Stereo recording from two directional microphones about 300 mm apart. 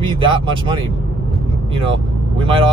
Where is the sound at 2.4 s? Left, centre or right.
Centre.